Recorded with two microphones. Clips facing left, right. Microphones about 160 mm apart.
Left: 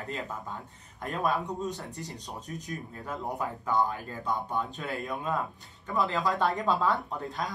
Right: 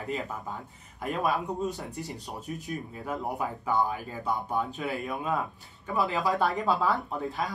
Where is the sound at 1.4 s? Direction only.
20° right (ahead or behind).